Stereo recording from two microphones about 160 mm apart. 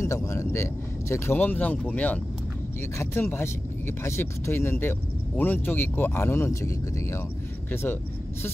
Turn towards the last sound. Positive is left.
turn(degrees=15)  # may be behind; listen again after turning